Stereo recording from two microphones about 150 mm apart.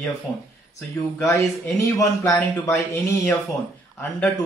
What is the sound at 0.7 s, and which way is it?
A man's voice, 20° left (ahead or behind).